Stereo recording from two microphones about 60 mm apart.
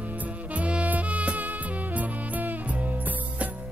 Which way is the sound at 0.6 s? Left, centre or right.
Right.